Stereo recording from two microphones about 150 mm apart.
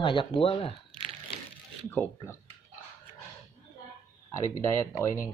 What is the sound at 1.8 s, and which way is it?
Speech, 15° left (ahead or behind).